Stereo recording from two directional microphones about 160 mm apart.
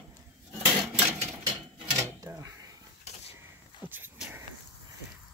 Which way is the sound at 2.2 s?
20° right (ahead or behind).